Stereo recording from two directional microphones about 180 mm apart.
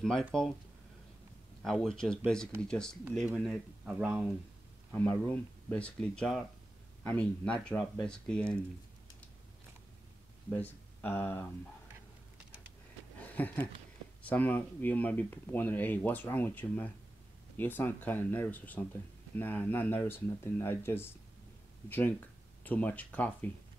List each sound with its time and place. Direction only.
0.3 s speech: 5° left (ahead or behind)
1.6 s speech: centre (ahead or behind)
4.9 s speech: 10° left (ahead or behind)
10.5 s speech: 10° left (ahead or behind)
13.2 s a sound: 10° left (ahead or behind)
14.2 s speech: 10° left (ahead or behind)